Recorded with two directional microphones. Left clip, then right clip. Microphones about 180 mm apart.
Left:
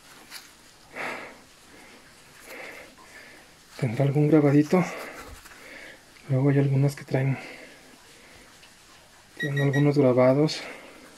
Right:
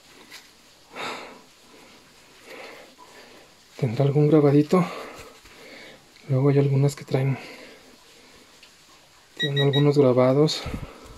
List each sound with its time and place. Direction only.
0.9 s a sound: 20° right (ahead or behind)
3.7 s speech: 20° right (ahead or behind)
6.3 s speech: 20° right (ahead or behind)
9.5 s speech: 15° right (ahead or behind)
10.4 s speech: 35° right (ahead or behind)